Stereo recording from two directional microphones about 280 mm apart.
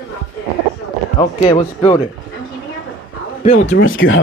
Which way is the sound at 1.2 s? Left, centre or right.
Centre.